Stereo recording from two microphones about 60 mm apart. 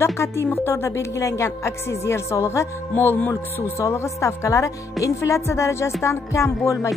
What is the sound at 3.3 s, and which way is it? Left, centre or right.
Speech, left.